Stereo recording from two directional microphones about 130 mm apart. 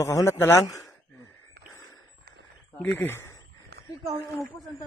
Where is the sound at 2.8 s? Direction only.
15° left (ahead or behind).